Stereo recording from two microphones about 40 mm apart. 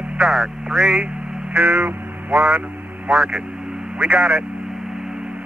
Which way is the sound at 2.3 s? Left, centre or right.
Centre.